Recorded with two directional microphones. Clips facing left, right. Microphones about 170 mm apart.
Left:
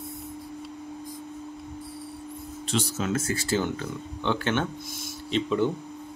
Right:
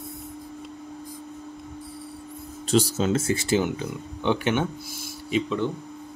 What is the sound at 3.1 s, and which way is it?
Speech, 25° right (ahead or behind).